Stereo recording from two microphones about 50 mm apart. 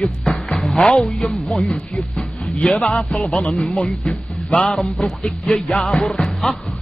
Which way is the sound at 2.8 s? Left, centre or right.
Centre.